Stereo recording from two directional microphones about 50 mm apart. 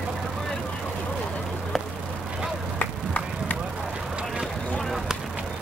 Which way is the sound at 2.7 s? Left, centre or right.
Left.